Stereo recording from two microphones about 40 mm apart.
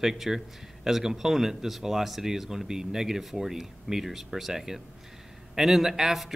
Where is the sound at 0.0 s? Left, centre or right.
Centre.